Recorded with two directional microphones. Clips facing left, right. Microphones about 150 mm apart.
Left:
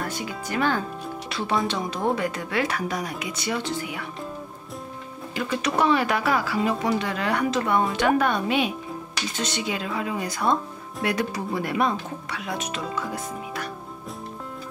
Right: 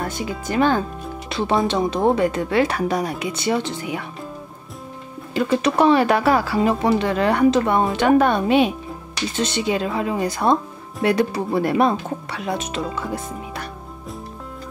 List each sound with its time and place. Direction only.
0.5 s speech: 25° right (ahead or behind)
5.3 s speech: 30° right (ahead or behind)